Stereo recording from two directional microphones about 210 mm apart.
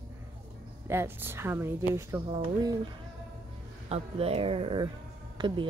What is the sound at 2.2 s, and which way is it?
Speech, 25° right (ahead or behind).